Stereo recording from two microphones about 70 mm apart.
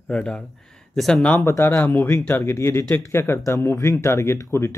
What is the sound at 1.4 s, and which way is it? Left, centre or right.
Speech, left.